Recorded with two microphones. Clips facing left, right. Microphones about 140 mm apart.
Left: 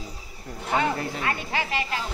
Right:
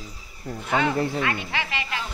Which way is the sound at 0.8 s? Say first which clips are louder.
Right 3 dB; 40° left (ahead or behind).